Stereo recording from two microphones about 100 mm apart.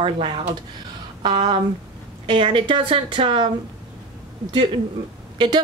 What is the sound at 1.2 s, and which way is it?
A woman's voice, 45° right (ahead or behind).